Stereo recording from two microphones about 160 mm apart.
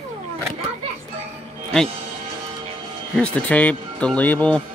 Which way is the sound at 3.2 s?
10° left (ahead or behind).